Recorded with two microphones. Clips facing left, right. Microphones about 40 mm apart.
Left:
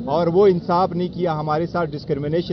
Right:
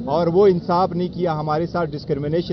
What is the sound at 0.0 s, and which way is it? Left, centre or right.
Speech, left.